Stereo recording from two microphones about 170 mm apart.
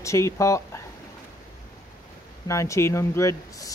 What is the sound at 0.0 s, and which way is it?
Speech, 15° left (ahead or behind).